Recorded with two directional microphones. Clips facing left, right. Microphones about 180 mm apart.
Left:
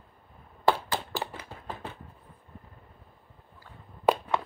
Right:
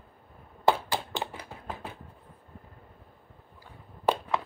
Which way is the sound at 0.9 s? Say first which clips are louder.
Even; 15° right (ahead or behind).